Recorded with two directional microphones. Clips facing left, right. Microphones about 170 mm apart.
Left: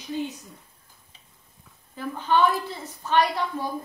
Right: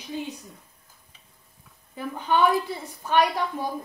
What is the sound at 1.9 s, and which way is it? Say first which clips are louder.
Speech: left 1 dB; 15° right (ahead or behind).